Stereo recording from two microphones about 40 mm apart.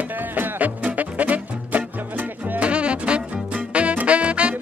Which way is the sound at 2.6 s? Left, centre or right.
Right.